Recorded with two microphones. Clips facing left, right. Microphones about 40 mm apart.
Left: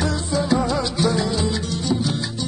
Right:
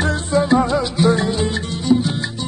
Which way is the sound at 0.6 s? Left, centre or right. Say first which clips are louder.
Right 4 dB; right.